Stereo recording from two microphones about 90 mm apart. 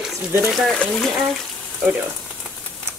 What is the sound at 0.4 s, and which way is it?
Speech, centre (ahead or behind).